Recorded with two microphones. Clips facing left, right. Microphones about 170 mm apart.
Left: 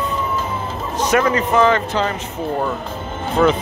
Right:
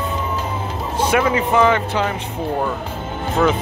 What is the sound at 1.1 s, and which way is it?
Speech, 10° right (ahead or behind).